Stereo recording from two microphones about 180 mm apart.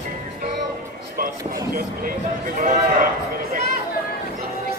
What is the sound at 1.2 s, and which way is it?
Speech, 55° right (ahead or behind).